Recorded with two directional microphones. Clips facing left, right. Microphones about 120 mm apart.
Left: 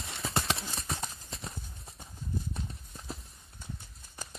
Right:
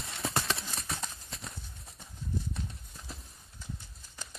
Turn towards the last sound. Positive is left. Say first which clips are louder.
# left 5 dB
turn(degrees=0)  # may be behind; listen again after turning